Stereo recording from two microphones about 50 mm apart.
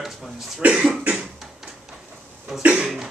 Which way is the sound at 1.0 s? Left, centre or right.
Right.